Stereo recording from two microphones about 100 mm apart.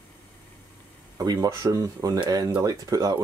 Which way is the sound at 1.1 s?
35° right (ahead or behind).